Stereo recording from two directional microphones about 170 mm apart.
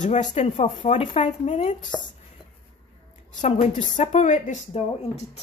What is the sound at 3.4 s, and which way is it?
A woman's voice, 40° left (ahead or behind).